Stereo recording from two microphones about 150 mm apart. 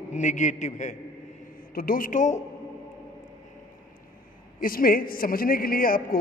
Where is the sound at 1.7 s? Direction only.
75° left (ahead or behind); by 2.4 s 55° left (ahead or behind).